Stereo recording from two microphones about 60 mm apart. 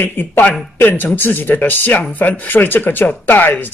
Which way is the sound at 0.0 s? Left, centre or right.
Left.